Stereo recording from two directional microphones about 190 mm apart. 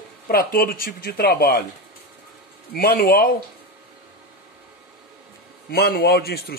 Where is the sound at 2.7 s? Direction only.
50° left (ahead or behind).